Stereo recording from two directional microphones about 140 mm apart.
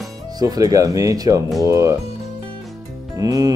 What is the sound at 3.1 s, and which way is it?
Music, 25° right (ahead or behind).